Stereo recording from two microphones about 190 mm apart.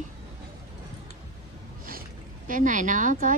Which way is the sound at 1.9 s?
45° right (ahead or behind).